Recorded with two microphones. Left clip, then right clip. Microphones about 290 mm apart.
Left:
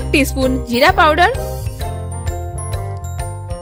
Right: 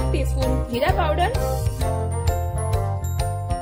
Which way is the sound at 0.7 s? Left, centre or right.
Left.